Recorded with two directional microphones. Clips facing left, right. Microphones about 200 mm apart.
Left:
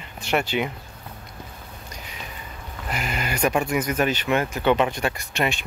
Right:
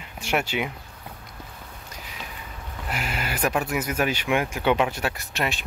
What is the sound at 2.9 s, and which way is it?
Speech, 5° right (ahead or behind).